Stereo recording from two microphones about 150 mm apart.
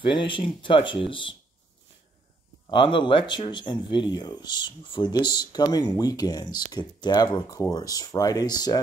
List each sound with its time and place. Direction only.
0.0 s speech: 35° left (ahead or behind)
2.6 s speech: 35° left (ahead or behind)